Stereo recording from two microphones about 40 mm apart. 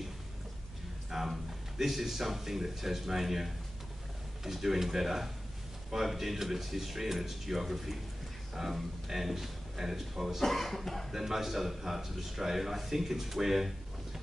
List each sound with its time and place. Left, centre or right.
1.1 s a man's voice: centre
11.1 s a man's voice: centre